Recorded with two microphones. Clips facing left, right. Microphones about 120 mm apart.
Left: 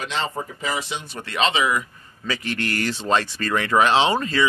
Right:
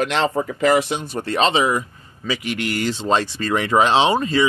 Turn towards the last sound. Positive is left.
turn(degrees=-20)  # may be behind; listen again after turning